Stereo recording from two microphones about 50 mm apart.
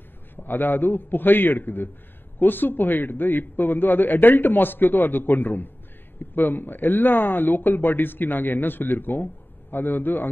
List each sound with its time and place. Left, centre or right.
0.4 s a man's voice: left